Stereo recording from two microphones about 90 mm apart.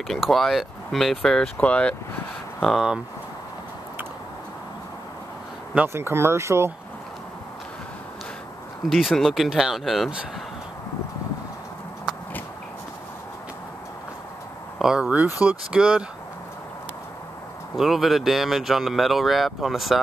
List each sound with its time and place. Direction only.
0.3 s speech: centre (ahead or behind)
2.6 s speech: 5° right (ahead or behind)
5.9 s speech: 25° right (ahead or behind)
8.8 s speech: centre (ahead or behind)
14.8 s speech: 5° right (ahead or behind)
17.7 s speech: centre (ahead or behind)